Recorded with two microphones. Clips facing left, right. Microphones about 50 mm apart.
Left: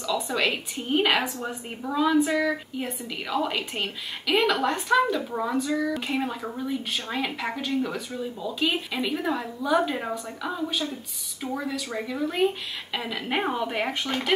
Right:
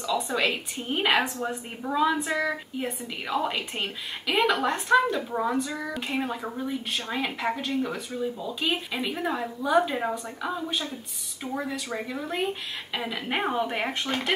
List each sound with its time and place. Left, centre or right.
0.1 s speech: centre
0.5 s a woman's voice: centre
1.2 s speech: centre
1.8 s a woman's voice: centre
5.9 s a woman's voice: centre
11.4 s speech: centre
11.9 s a woman's voice: centre